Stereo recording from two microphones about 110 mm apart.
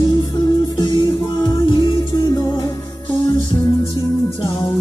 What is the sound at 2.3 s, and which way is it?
Music, 35° left (ahead or behind).